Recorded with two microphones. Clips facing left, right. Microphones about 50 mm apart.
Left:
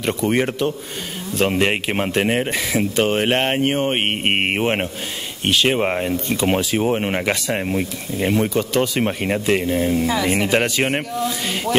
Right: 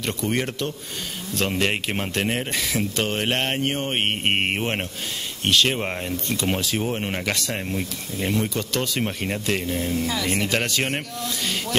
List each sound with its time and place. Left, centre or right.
0.0 s speech: centre